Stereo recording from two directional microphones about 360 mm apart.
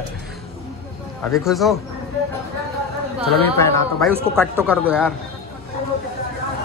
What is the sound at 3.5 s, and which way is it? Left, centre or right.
Speech, centre.